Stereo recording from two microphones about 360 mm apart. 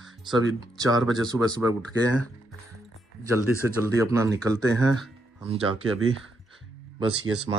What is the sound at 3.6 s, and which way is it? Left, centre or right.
Speech, centre.